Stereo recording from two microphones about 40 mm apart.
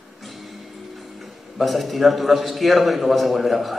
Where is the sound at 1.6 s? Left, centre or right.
Centre.